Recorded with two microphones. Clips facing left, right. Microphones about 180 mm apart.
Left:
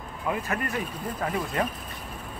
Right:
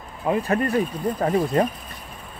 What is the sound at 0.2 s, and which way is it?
Speech, 30° right (ahead or behind).